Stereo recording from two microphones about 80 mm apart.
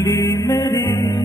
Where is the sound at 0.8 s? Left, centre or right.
Left.